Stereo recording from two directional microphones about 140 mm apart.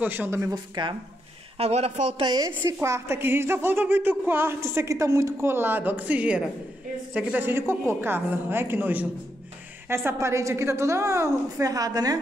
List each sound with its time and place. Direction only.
0.0 s a woman's voice: 15° right (ahead or behind)
0.8 s speech: 35° right (ahead or behind)
1.6 s a man's voice: 50° right (ahead or behind)
2.2 s a woman's voice: 30° right (ahead or behind)